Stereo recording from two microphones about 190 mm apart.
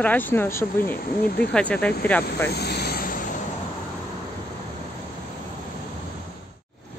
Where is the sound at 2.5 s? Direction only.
60° left (ahead or behind).